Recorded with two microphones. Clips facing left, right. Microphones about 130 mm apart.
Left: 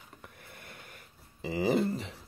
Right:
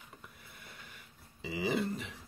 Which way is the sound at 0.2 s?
55° left (ahead or behind).